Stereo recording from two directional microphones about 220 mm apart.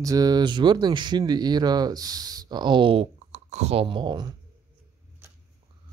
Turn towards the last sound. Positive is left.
turn(degrees=-20)  # may be behind; listen again after turning